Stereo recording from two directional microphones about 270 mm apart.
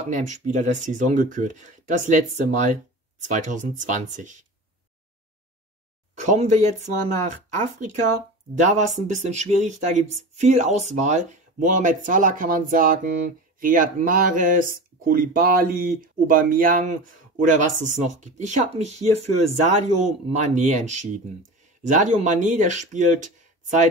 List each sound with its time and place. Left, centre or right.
0.1 s speech: right
6.1 s speech: right